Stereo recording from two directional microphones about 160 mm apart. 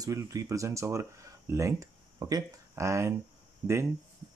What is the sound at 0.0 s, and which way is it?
A man's voice, 20° right (ahead or behind).